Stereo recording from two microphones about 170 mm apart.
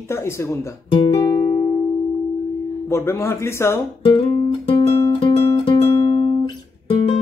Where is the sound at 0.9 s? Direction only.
30° left (ahead or behind).